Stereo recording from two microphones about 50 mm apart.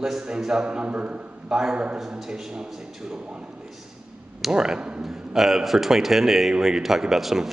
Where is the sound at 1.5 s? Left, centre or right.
Centre.